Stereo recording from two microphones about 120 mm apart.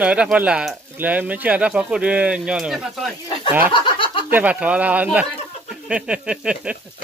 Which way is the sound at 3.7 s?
45° left (ahead or behind).